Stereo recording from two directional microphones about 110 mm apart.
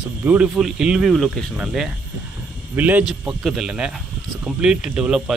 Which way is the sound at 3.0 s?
5° right (ahead or behind).